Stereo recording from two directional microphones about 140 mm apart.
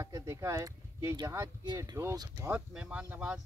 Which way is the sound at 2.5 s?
10° right (ahead or behind).